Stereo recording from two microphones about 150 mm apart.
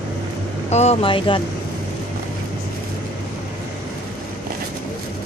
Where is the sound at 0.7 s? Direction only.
45° left (ahead or behind).